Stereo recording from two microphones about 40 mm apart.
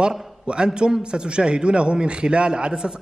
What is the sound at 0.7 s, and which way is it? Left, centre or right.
A man's voice, centre.